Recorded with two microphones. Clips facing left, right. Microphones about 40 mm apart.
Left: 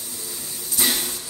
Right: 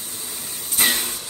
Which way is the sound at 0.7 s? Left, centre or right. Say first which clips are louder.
Right 3 dB; right.